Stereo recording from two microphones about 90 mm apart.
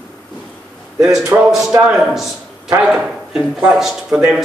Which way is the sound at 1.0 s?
35° right (ahead or behind).